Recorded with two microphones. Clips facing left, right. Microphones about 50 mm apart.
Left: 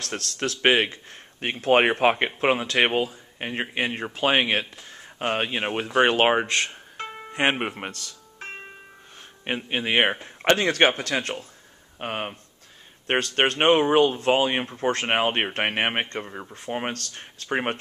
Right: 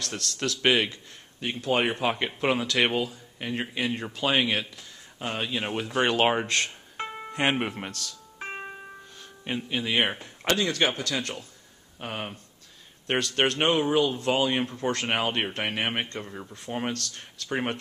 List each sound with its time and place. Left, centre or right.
0.4 s speech: left
1.4 s speech: left
4.9 s a sound: left
5.7 s speech: left
6.4 s speech: centre
7.1 s music: centre
7.3 s speech: centre
8.4 s music: centre
9.7 s speech: left
13.7 s speech: left